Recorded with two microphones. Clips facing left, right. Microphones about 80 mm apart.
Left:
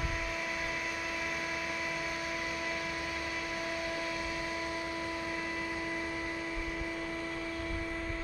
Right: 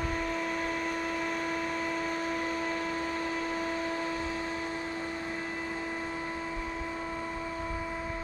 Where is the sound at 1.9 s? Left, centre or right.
Right.